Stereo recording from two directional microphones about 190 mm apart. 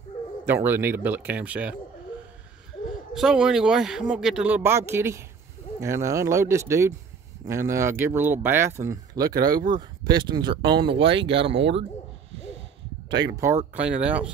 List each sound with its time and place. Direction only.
0.5 s speech: 10° right (ahead or behind)
3.2 s speech: 5° right (ahead or behind); by 11.6 s 30° right (ahead or behind)
13.2 s speech: 15° right (ahead or behind)